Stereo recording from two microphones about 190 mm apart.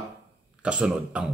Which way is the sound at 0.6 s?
5° right (ahead or behind).